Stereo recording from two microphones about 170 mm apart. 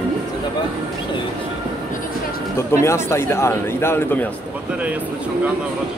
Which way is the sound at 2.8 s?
15° left (ahead or behind).